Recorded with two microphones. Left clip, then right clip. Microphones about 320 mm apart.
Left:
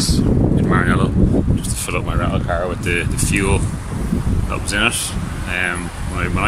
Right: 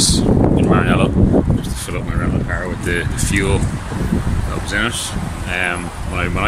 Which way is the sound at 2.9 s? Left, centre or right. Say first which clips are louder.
Even; centre.